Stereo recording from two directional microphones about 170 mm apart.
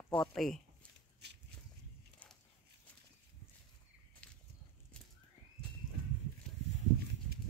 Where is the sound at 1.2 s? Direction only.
80° right.